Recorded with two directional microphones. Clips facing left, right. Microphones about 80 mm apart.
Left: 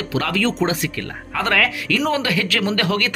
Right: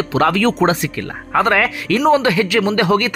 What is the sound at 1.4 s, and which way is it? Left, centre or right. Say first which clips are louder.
Speech: right 5 dB; right.